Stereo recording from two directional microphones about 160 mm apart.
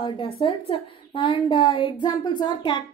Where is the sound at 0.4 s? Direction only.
35° left (ahead or behind).